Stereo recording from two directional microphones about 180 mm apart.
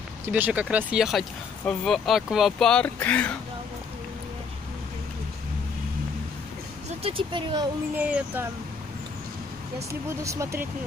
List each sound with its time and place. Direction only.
0.3 s speech: 10° right (ahead or behind); by 3.3 s 5° left (ahead or behind)
7.0 s speech: 30° right (ahead or behind)
7.9 s speech: 10° right (ahead or behind)
10.2 s speech: 15° right (ahead or behind)